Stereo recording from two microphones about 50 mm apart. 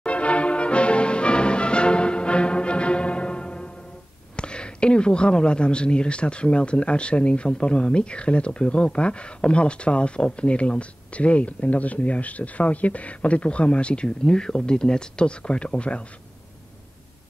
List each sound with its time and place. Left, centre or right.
0.0 s brass instrument: left
4.4 s speech: centre